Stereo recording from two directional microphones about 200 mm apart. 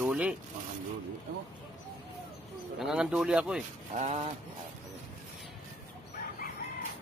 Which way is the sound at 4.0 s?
35° right (ahead or behind).